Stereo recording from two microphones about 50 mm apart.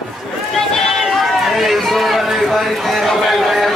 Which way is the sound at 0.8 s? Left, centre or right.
Centre.